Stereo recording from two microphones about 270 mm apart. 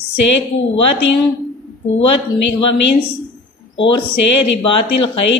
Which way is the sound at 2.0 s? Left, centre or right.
Left.